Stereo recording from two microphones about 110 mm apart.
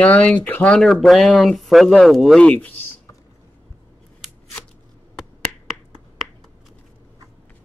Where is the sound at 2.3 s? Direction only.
10° left (ahead or behind).